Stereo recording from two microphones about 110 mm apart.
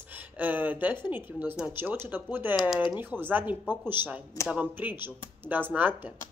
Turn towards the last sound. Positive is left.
turn(degrees=-15)  # may be behind; listen again after turning